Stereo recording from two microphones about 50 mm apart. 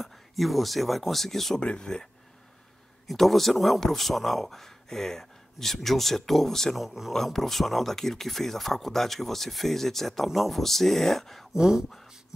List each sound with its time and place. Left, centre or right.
0.0 s speech: centre
1.6 s speech: centre
3.1 s speech: centre
6.8 s speech: centre
11.5 s speech: centre